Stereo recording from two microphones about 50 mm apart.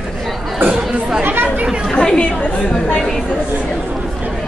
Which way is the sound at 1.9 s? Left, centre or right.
Centre.